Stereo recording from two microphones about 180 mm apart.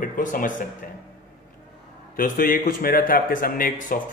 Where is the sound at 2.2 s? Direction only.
50° left (ahead or behind).